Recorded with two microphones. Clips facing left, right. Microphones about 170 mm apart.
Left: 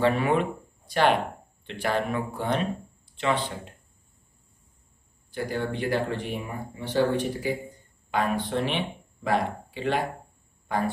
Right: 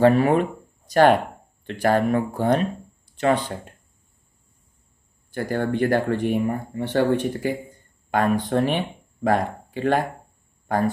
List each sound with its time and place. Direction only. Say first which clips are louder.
0.0 s speech: right 6 dB; 40° right (ahead or behind)
5.3 s speech: right 5 dB; 50° right (ahead or behind)